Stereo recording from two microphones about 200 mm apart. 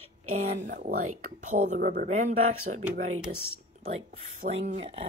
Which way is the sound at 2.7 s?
50° right (ahead or behind).